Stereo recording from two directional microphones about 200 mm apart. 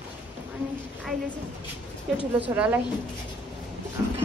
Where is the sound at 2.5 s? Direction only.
5° right (ahead or behind).